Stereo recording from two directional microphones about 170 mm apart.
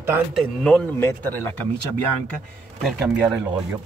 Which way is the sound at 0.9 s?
15° left (ahead or behind).